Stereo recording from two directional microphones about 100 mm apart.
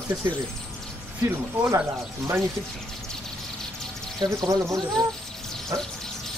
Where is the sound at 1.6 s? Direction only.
30° right (ahead or behind).